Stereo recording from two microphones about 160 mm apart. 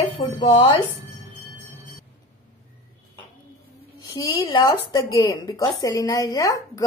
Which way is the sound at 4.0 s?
25° left (ahead or behind).